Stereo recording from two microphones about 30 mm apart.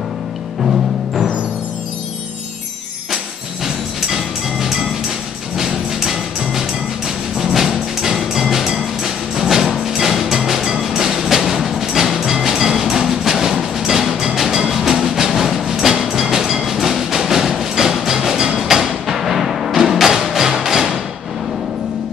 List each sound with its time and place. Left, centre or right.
0.7 s music: centre
3.6 s music: centre
5.9 s music: centre
15.9 s train: centre
16.5 s music: centre